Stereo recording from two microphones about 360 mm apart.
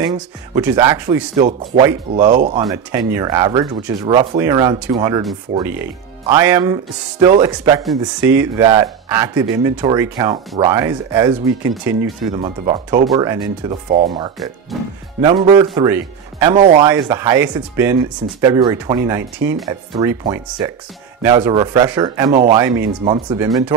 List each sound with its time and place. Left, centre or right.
0.0 s speech: centre
2.3 s speech: right
2.6 s speech: centre
6.2 s speech: centre
14.7 s speech: centre
15.2 s speech: centre